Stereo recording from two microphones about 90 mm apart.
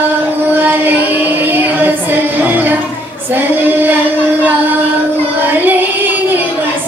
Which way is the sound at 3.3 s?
20° right (ahead or behind).